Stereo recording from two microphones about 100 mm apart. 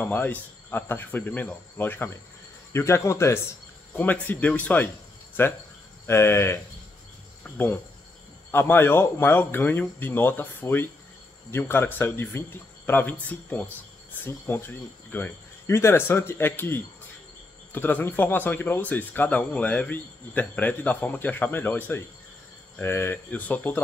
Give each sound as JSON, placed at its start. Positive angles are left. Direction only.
{"t": 0.0, "sound": "speech", "side_deg": 15}
{"t": 3.9, "sound": "speech", "side_deg": 20}